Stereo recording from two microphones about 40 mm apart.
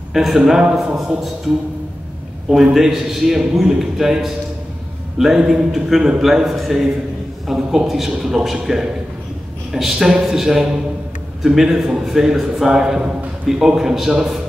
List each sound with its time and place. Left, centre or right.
0.1 s a man's voice: centre
2.5 s a man's voice: centre